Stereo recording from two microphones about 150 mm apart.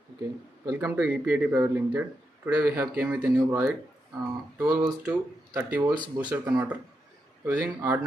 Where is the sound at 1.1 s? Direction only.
10° right (ahead or behind).